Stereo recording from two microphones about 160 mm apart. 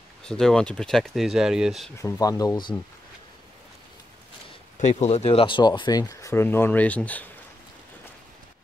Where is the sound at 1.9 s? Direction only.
20° left (ahead or behind).